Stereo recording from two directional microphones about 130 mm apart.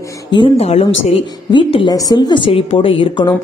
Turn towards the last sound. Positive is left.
turn(degrees=40)  # may be behind; listen again after turning